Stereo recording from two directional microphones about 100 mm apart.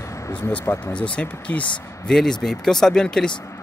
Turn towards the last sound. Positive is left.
turn(degrees=5)  # may be behind; listen again after turning